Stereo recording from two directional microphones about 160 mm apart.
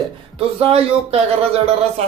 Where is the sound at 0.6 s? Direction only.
40° right (ahead or behind).